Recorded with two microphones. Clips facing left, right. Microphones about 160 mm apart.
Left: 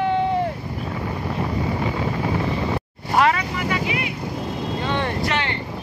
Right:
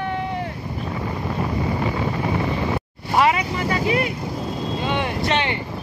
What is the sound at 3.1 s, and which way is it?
Vehicle, 5° right (ahead or behind).